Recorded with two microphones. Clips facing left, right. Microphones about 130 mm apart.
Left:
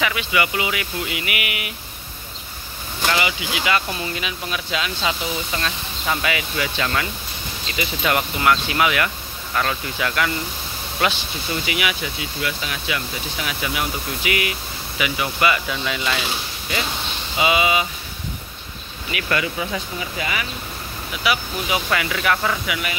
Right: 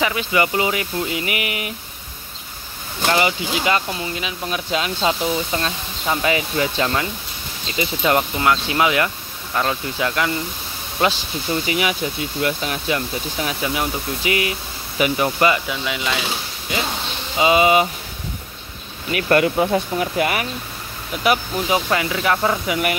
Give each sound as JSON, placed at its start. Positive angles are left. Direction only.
{"t": 0.0, "sound": "speech", "side_deg": -35}
{"t": 3.1, "sound": "speech", "side_deg": -40}
{"t": 5.5, "sound": "speech", "side_deg": -25}
{"t": 11.6, "sound": "speech", "side_deg": -35}
{"t": 12.2, "sound": "speech", "side_deg": -45}
{"t": 15.7, "sound": "speech", "side_deg": -15}
{"t": 17.4, "sound": "speech", "side_deg": -35}
{"t": 19.1, "sound": "speech", "side_deg": -45}
{"t": 21.2, "sound": "speech", "side_deg": -40}